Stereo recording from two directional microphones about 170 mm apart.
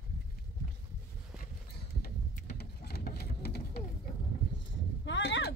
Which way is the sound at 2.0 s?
70° left (ahead or behind).